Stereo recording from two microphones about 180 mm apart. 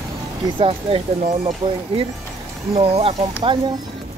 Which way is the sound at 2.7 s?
35° right (ahead or behind).